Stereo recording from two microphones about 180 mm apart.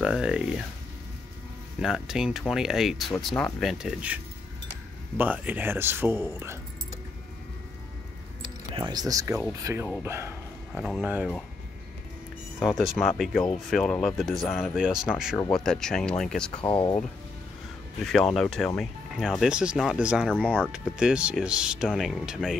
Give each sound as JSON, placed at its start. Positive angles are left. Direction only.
{"t": 0.0, "sound": "speech", "side_deg": -5}
{"t": 1.8, "sound": "speech", "side_deg": 0}
{"t": 8.7, "sound": "speech", "side_deg": -25}
{"t": 10.7, "sound": "speech", "side_deg": 0}
{"t": 12.5, "sound": "speech", "side_deg": 0}
{"t": 16.5, "sound": "speech", "side_deg": 25}
{"t": 18.0, "sound": "speech", "side_deg": 0}
{"t": 20.7, "sound": "speech", "side_deg": -5}